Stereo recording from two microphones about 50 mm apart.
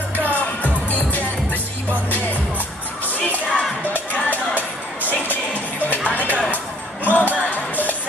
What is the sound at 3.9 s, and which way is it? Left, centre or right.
Music, left.